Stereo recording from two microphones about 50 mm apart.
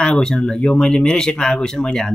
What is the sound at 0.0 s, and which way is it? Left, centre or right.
Speech, centre.